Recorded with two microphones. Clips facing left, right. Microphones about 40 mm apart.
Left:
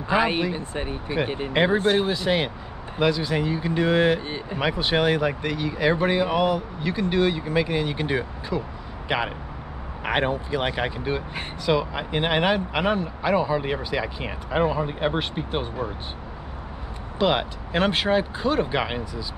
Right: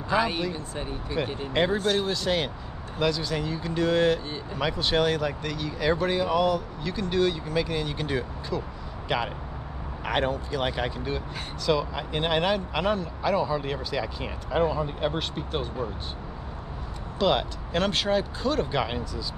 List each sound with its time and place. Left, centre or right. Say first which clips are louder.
0.1 s speech: left 4 dB; left
17.2 s speech: left 2 dB; left